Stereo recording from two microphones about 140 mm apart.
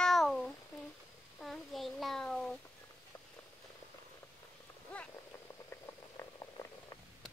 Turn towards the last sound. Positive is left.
turn(degrees=25)  # may be behind; listen again after turning